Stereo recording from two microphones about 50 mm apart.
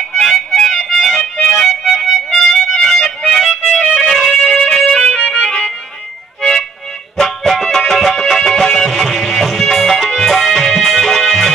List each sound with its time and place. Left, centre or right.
0.1 s music: centre
7.2 s music: centre